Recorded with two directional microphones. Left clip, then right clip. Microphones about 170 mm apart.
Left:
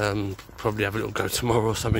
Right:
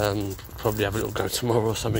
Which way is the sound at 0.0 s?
20° left (ahead or behind).